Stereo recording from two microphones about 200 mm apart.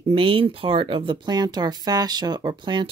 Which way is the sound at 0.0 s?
25° right (ahead or behind).